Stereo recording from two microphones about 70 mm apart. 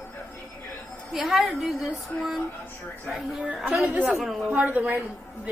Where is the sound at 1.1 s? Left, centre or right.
Centre.